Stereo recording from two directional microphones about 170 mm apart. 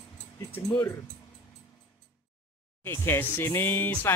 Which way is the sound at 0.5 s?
25° left (ahead or behind).